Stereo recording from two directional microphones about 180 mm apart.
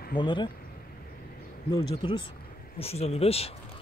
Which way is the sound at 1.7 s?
25° left (ahead or behind).